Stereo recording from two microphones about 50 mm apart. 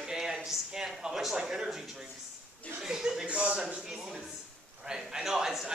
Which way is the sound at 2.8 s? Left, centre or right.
Centre.